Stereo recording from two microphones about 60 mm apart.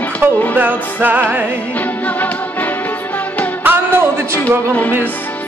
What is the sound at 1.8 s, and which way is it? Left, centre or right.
Music, left.